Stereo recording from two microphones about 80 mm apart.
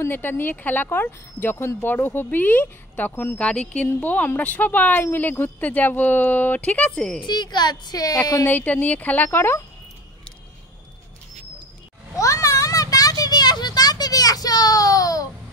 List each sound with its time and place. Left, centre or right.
0.1 s speech: left
7.2 s a woman's voice: left
8.5 s speech: left
12.2 s a sound: left
13.2 s children playing: left